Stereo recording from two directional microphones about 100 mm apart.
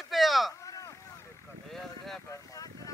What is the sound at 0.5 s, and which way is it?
Boat, 30° left (ahead or behind).